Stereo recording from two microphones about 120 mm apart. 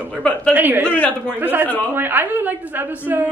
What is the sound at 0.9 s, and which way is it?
Speech, 15° left (ahead or behind).